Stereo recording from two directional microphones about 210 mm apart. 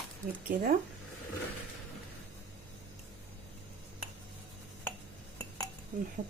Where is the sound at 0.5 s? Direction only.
45° right (ahead or behind).